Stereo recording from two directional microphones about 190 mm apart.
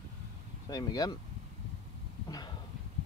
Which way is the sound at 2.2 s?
20° left (ahead or behind).